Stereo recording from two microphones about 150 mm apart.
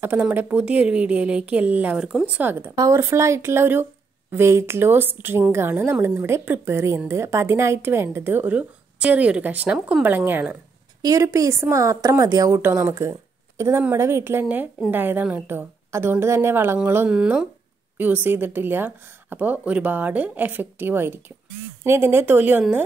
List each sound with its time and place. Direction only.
0.0 s a woman's voice: 15° right (ahead or behind)